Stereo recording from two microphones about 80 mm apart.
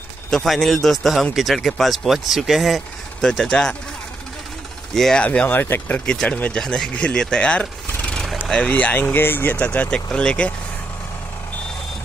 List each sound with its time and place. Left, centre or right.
0.3 s speech: centre
3.3 s speech: centre
4.9 s speech: centre
5.2 s speech: centre
6.6 s speech: centre